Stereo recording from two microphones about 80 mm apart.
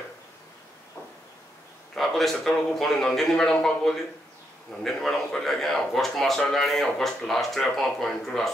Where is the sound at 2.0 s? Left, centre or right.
Centre.